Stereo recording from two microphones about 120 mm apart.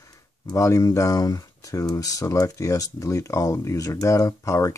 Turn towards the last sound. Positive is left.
turn(degrees=25)  # may be behind; listen again after turning